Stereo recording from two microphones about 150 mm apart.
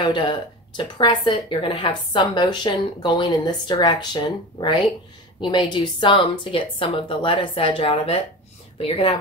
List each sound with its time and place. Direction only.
0.0 s a woman's voice: 30° left (ahead or behind)